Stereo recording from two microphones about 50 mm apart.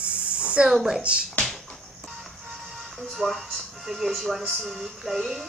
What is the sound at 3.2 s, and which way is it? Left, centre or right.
Speech, centre.